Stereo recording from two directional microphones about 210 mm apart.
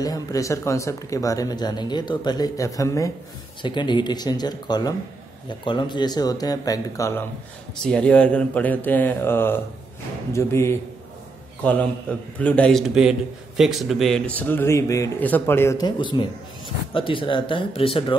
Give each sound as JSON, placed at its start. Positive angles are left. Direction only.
{"t": 0.0, "sound": "a man's voice", "side_deg": 15}